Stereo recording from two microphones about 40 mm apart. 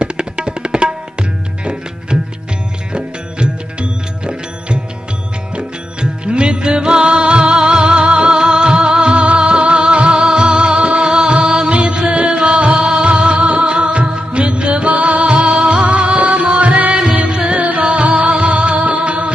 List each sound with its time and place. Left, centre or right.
0.0 s tabla: right
1.6 s music: right
12.7 s music: centre
13.0 s music: right